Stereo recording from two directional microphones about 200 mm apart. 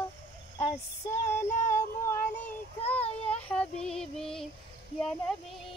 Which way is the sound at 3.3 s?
5° left (ahead or behind).